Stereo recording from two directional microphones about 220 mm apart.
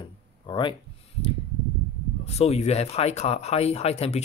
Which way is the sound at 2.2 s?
30° left (ahead or behind).